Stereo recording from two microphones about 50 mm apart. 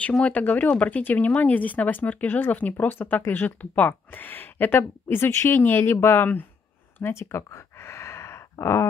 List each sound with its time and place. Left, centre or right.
0.2 s speech: left
5.3 s speech: left
7.0 s a sound: left